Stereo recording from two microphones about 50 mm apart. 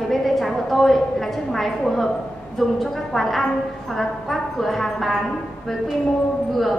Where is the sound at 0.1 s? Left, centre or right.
Centre.